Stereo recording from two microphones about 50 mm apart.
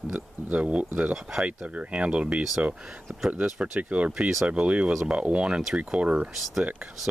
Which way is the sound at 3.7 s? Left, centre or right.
Right.